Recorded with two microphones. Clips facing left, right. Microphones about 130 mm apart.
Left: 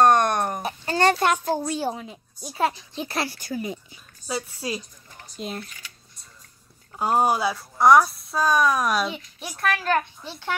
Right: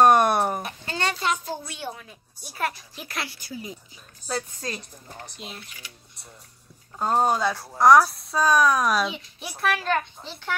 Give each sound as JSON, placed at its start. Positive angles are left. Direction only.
{"t": 0.0, "sound": "a sound", "side_deg": -10}
{"t": 0.6, "sound": "a sound", "side_deg": 40}
{"t": 1.1, "sound": "a child's voice", "side_deg": 55}
{"t": 1.7, "sound": "a woman's voice", "side_deg": 35}
{"t": 2.0, "sound": "a woman's voice", "side_deg": 25}
{"t": 4.3, "sound": "speech", "side_deg": 5}
{"t": 7.0, "sound": "speech", "side_deg": 10}